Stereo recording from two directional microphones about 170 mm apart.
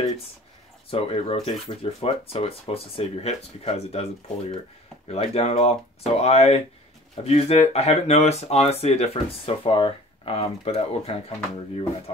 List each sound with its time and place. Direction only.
0.8 s speech: 35° left (ahead or behind)